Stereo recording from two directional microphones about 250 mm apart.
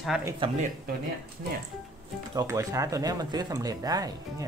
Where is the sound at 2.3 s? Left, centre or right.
Centre.